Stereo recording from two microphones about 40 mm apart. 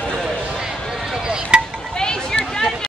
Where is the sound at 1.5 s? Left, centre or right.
Right.